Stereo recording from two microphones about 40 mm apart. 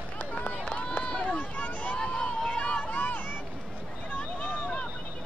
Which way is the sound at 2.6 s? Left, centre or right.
Left.